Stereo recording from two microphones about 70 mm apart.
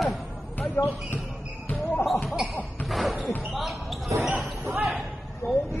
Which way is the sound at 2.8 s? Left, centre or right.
Centre.